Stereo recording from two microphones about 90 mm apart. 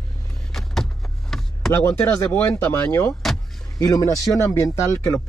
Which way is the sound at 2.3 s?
15° left (ahead or behind).